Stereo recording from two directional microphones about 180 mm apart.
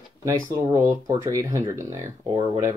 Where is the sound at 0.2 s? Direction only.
15° right (ahead or behind).